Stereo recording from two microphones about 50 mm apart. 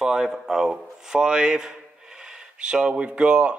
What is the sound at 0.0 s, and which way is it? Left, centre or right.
Speech, centre.